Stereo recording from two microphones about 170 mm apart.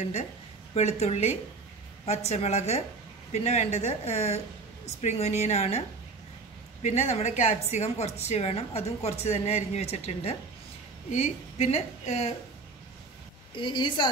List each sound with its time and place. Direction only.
0.0 s a woman's voice: 40° left (ahead or behind)
13.6 s a woman's voice: 30° left (ahead or behind)